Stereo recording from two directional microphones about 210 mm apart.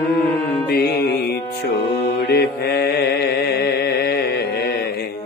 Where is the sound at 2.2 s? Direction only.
50° left (ahead or behind).